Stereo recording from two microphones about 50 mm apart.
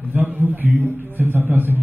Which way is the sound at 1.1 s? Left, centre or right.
Right.